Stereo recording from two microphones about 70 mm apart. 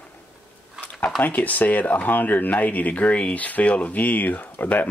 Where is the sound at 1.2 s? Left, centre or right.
Left.